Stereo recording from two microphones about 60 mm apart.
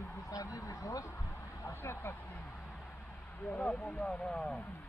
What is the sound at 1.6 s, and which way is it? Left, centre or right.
Speech, left.